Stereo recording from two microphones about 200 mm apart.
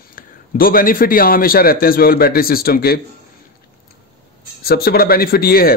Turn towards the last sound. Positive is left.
turn(degrees=50)  # may be behind; listen again after turning